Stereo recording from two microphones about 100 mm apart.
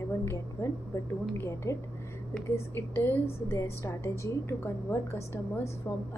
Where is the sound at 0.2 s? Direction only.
25° left (ahead or behind).